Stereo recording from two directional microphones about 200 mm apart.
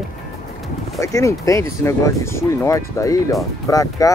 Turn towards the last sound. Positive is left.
turn(degrees=15)  # may be behind; listen again after turning